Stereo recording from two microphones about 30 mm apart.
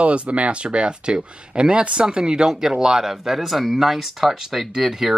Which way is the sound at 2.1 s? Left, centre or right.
Right.